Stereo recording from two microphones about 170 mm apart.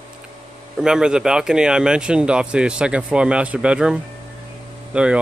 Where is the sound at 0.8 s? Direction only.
5° right (ahead or behind).